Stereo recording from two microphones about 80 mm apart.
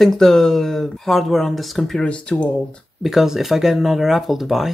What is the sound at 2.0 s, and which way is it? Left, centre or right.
Speech, centre.